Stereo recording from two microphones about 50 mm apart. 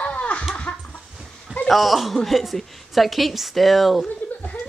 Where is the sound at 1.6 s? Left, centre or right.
Centre.